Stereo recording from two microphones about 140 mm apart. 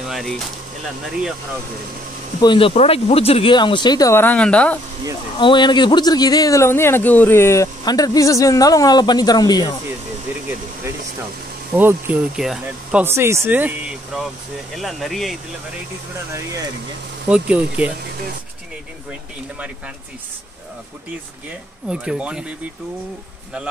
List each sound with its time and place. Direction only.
0.0 s a sound: centre (ahead or behind)
2.4 s speech: 35° left (ahead or behind)
2.7 s speech: 50° left (ahead or behind); by 4.1 s 30° left (ahead or behind)
4.1 s speech: 15° left (ahead or behind)
5.4 s speech: 35° left (ahead or behind)
11.7 s speech: 15° right (ahead or behind)
12.4 s speech: 5° right (ahead or behind)
13.0 s speech: 20° right (ahead or behind); by 15.3 s centre (ahead or behind)
17.3 s speech: 10° right (ahead or behind)
21.8 s speech: 5° right (ahead or behind)